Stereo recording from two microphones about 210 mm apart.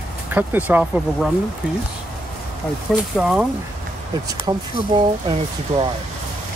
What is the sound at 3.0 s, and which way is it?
Speech, 5° right (ahead or behind).